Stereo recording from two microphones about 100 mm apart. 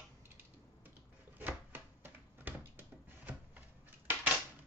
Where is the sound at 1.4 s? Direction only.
20° right (ahead or behind).